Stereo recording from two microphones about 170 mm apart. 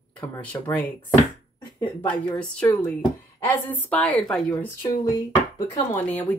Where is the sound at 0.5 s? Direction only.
15° left (ahead or behind).